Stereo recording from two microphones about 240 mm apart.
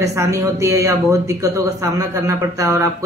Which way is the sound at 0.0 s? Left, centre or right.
Centre.